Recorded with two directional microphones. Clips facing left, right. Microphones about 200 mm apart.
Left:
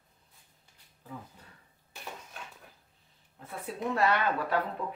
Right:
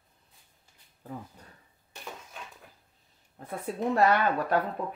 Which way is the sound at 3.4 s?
45° right (ahead or behind).